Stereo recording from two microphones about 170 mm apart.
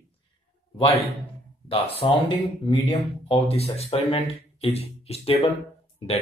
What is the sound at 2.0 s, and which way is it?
Speech, 30° left (ahead or behind).